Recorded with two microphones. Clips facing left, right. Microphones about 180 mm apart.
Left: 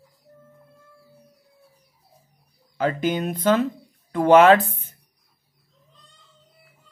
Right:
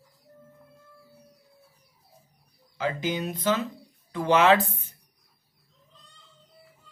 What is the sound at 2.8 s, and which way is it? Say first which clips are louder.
Speech: left 5 dB; 55° left (ahead or behind).